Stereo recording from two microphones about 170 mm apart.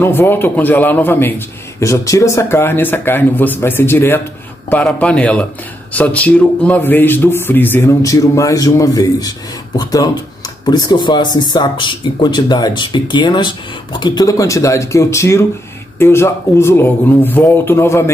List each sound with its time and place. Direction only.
0.0 s speech: 15° left (ahead or behind)